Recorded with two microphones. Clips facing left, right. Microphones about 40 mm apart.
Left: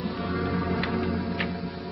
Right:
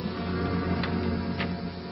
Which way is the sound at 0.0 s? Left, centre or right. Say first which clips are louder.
Left 2 dB; centre.